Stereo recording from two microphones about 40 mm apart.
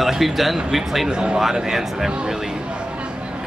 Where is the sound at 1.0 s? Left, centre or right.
Centre.